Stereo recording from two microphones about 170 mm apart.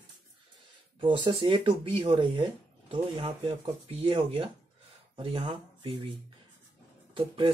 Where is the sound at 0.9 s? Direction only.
30° right (ahead or behind).